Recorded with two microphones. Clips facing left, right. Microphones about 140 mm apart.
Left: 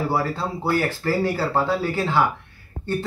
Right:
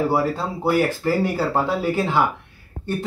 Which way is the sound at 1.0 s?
15° right (ahead or behind).